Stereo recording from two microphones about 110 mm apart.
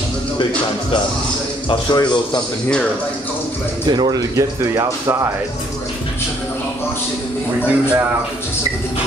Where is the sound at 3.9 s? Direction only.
40° right (ahead or behind).